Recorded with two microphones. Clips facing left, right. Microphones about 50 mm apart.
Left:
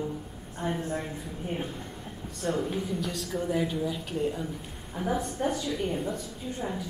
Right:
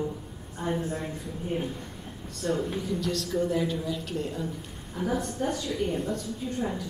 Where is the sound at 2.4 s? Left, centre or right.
Left.